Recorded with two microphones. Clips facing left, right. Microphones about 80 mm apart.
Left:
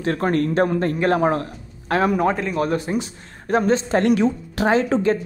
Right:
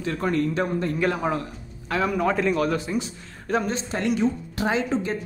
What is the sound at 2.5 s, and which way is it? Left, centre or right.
Speech, left.